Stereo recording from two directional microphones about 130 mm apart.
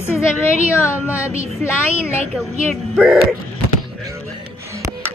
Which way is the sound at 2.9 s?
5° right (ahead or behind).